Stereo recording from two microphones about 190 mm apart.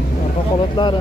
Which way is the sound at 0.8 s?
20° left (ahead or behind).